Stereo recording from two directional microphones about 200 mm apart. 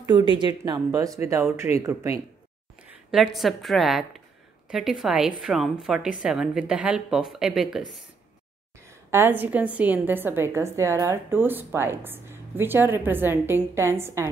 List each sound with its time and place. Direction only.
0.0 s a woman's voice: 25° right (ahead or behind)
2.9 s a woman's voice: centre (ahead or behind)
9.1 s a woman's voice: 10° right (ahead or behind)